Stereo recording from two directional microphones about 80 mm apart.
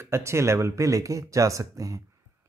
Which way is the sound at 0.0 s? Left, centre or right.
Right.